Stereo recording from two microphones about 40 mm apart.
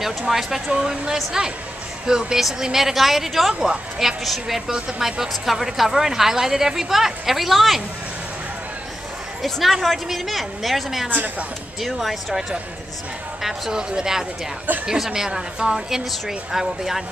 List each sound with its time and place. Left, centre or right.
0.3 s speech: centre
0.7 s speech: centre
4.2 s a woman's voice: centre
4.6 s speech: centre
5.3 s speech: centre
9.4 s a woman's voice: centre
11.1 s a woman's voice: right
11.8 s a woman's voice: centre